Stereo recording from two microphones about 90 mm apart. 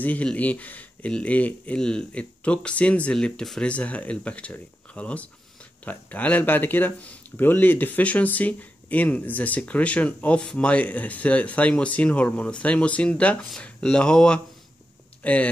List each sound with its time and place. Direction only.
0.0 s speech: 15° left (ahead or behind)